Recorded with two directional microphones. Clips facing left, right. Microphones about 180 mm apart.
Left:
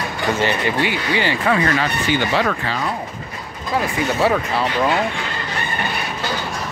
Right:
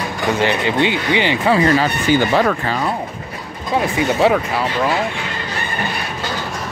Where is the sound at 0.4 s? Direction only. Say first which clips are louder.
Right 4 dB; 20° right (ahead or behind).